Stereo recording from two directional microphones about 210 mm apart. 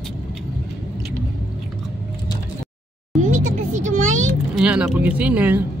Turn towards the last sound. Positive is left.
turn(degrees=-10)  # may be behind; listen again after turning